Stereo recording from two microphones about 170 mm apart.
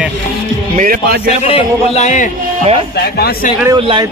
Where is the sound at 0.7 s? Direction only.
55° right (ahead or behind).